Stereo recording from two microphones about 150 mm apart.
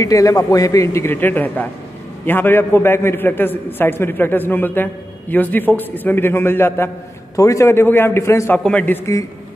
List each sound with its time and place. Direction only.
0.0 s a man's voice: 25° left (ahead or behind)